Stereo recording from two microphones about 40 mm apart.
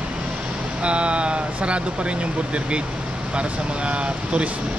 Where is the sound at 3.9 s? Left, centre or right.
Right.